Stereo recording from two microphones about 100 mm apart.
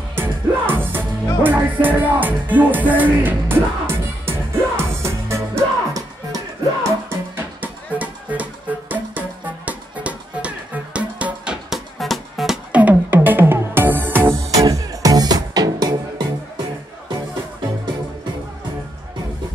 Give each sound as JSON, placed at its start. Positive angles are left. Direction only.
{"t": 0.1, "sound": "music", "side_deg": -20}
{"t": 12.8, "sound": "music", "side_deg": -20}
{"t": 14.5, "sound": "music", "side_deg": -35}